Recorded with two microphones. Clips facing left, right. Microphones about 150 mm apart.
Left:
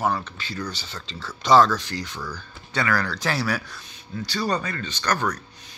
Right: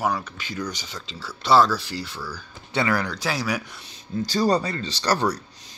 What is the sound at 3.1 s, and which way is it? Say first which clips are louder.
Speech: left 1 dB; 10° right (ahead or behind).